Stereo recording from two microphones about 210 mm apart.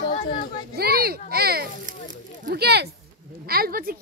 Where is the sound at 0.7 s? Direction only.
45° right (ahead or behind).